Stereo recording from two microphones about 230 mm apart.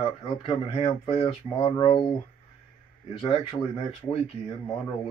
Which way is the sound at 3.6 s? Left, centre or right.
Left.